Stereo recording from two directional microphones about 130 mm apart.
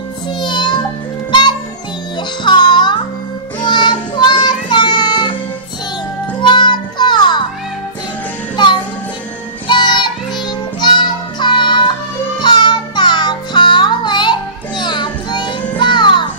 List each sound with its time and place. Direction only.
0.3 s music: 35° left (ahead or behind)
6.4 s music: 35° left (ahead or behind)
8.5 s music: 35° left (ahead or behind)